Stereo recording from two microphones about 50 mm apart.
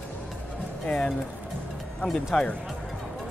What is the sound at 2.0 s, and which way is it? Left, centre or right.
Speech, centre.